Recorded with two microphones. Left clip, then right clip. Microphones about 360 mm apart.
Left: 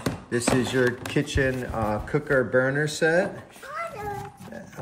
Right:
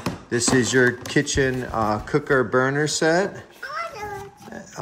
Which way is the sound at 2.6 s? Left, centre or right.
Centre.